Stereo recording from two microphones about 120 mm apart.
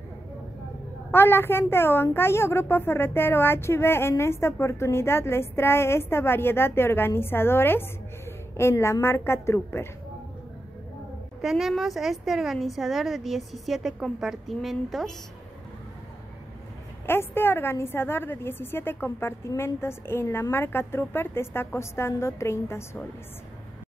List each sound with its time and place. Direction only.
1.1 s a woman's voice: 20° left (ahead or behind)
11.4 s a woman's voice: centre (ahead or behind)
17.0 s a woman's voice: 20° left (ahead or behind)